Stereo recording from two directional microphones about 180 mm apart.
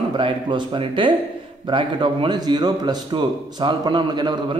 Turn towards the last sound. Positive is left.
turn(degrees=-25)  # may be behind; listen again after turning